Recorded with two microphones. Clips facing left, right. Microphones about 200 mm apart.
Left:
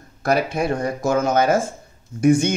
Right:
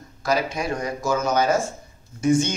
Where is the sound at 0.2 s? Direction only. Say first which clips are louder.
Left 4 dB; 60° left (ahead or behind).